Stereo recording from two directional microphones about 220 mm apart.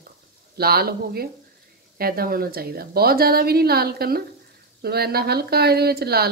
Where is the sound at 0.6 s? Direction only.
45° right (ahead or behind).